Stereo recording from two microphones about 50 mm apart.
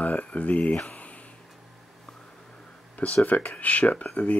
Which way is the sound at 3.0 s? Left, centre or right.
Left.